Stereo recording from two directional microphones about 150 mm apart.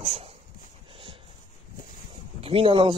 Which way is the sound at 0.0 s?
45° right (ahead or behind).